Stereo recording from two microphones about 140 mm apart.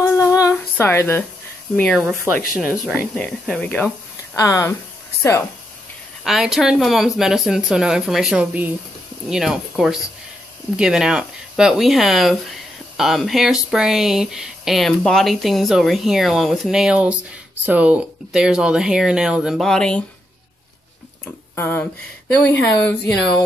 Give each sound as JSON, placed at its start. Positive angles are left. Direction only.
{"t": 0.0, "sound": "humming", "side_deg": 20}
{"t": 2.0, "sound": "speech", "side_deg": -15}
{"t": 3.2, "sound": "speech", "side_deg": 5}
{"t": 4.4, "sound": "speech", "side_deg": 20}
{"t": 6.2, "sound": "speech", "side_deg": 0}
{"t": 21.5, "sound": "speech", "side_deg": 15}